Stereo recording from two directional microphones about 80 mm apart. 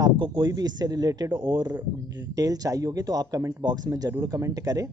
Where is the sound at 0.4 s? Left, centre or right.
Right.